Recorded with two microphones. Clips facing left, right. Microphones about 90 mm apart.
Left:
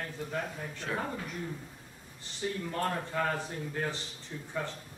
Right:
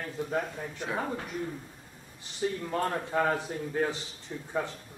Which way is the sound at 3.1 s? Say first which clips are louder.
Right 4 dB; 15° right (ahead or behind).